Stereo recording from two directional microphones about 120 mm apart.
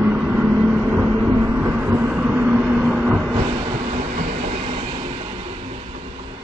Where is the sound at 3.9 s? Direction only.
75° right (ahead or behind); by 6.0 s 60° right (ahead or behind).